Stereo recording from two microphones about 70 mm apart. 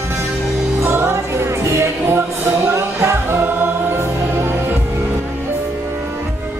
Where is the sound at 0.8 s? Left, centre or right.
Right.